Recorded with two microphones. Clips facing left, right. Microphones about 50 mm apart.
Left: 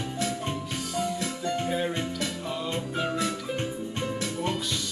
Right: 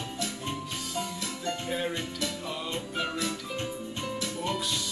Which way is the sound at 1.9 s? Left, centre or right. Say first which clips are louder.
Left 3 dB; left.